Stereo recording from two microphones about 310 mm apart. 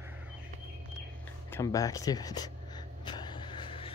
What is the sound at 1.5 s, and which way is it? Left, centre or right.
Speech, centre.